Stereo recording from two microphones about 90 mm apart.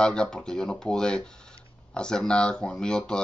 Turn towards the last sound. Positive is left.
turn(degrees=10)  # may be behind; listen again after turning